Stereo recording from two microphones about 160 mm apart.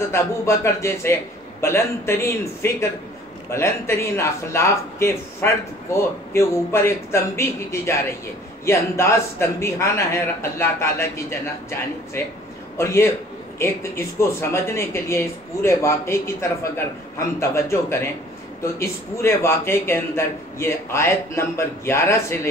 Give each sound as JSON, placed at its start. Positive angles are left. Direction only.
{"t": 0.1, "sound": "speech", "side_deg": 15}